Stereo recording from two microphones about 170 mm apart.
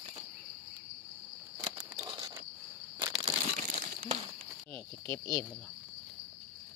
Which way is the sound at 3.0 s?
25° right (ahead or behind).